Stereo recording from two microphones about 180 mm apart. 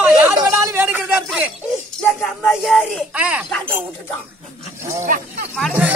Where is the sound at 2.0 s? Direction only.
Centre (ahead or behind).